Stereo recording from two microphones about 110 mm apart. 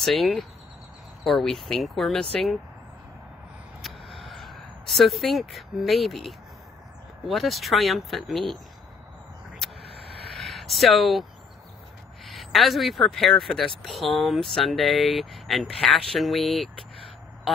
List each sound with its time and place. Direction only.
0.0 s speech: centre (ahead or behind)
4.3 s speech: centre (ahead or behind)
10.3 s a sound: centre (ahead or behind)
12.3 s speech: centre (ahead or behind)